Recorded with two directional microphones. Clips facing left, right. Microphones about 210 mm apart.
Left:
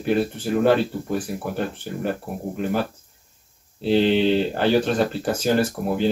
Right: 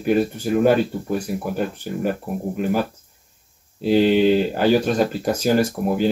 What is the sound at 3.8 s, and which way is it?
Speech, 10° right (ahead or behind).